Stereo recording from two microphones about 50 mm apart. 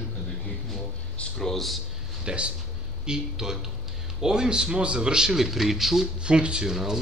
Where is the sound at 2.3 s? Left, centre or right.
Right.